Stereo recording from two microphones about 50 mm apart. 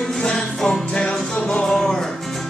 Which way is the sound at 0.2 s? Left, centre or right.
Centre.